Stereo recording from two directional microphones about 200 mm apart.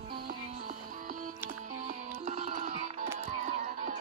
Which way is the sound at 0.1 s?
45° right (ahead or behind).